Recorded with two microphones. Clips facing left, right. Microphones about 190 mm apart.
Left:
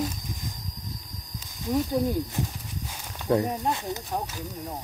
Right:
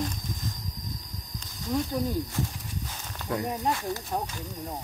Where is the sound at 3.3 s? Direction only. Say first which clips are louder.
Left 8 dB; 30° left (ahead or behind).